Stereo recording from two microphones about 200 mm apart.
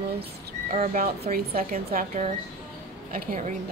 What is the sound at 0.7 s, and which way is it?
A woman's voice, 45° right (ahead or behind).